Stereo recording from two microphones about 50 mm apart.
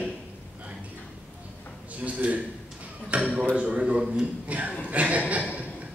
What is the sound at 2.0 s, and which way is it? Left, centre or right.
A man's voice, right.